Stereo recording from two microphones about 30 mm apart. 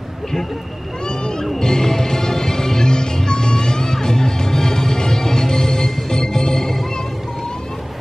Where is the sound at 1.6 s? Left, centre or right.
Centre.